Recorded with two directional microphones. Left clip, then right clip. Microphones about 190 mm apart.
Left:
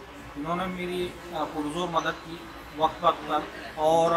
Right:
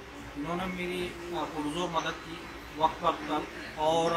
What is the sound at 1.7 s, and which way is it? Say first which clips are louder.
Speech: left 5 dB; 10° left (ahead or behind).